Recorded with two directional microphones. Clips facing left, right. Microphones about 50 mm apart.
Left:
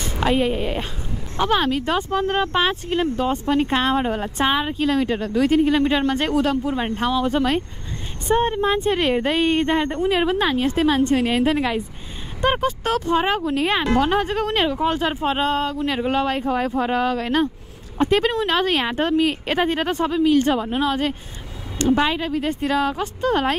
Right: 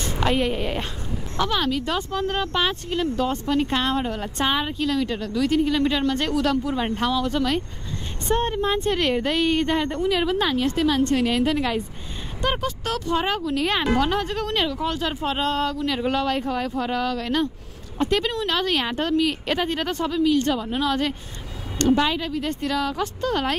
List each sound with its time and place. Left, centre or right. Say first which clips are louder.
0.0 s a woman's voice: left 2 dB; centre
1.4 s speech: left 4 dB; left
4.7 s speech: left 4 dB; left